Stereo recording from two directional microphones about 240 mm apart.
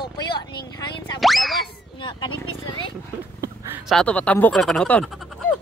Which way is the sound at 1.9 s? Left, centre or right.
Centre.